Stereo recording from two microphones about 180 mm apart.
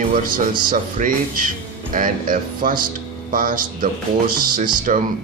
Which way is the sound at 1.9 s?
50° right (ahead or behind).